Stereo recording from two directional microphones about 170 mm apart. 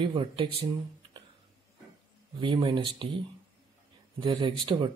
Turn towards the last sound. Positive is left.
turn(degrees=-30)  # may be behind; listen again after turning